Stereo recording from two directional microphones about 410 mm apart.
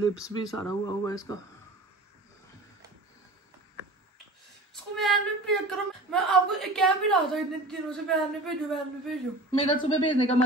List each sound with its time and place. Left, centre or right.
0.1 s speech: centre
4.9 s speech: centre
9.5 s speech: centre